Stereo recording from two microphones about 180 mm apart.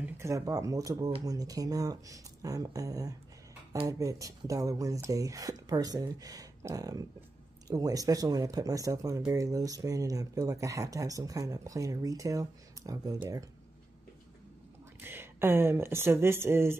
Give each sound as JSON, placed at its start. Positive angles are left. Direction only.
{"t": 0.0, "sound": "speech", "side_deg": -15}
{"t": 15.0, "sound": "speech", "side_deg": -10}